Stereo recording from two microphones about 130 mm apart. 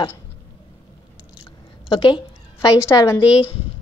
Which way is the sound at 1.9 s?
40° left (ahead or behind).